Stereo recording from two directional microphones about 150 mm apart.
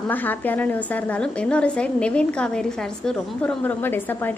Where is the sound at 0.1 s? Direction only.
10° left (ahead or behind).